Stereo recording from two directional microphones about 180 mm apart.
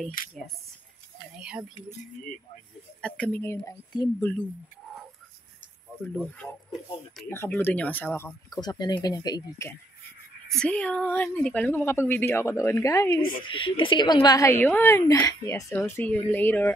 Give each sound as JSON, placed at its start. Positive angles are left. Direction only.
{"t": 0.2, "sound": "speech", "side_deg": 50}
{"t": 1.3, "sound": "speech", "side_deg": -5}
{"t": 3.0, "sound": "a woman's voice", "side_deg": 5}
{"t": 6.4, "sound": "a woman's voice", "side_deg": 5}
{"t": 8.5, "sound": "a woman's voice", "side_deg": 25}
{"t": 10.5, "sound": "a woman's voice", "side_deg": 5}
{"t": 13.3, "sound": "a woman's voice", "side_deg": 30}
{"t": 15.8, "sound": "a woman's voice", "side_deg": 5}